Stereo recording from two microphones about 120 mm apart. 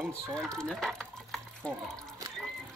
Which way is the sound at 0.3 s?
5° left (ahead or behind).